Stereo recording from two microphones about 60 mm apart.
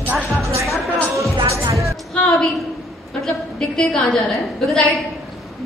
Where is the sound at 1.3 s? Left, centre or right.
Right.